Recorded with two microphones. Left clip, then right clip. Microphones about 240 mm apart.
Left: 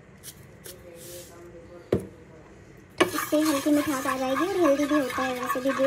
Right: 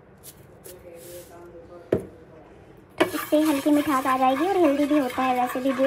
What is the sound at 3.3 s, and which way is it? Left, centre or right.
Speech, centre.